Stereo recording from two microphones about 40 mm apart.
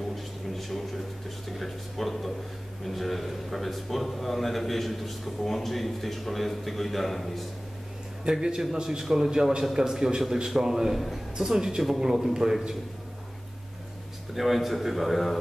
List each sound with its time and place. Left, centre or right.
0.1 s a sound: centre
1.6 s a man's voice: centre
8.3 s a man's voice: centre
14.3 s a man's voice: centre